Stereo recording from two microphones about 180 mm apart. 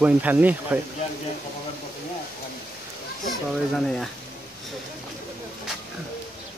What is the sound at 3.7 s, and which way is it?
Speech, centre (ahead or behind).